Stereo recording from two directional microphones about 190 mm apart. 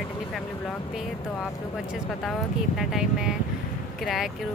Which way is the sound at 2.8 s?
Centre (ahead or behind).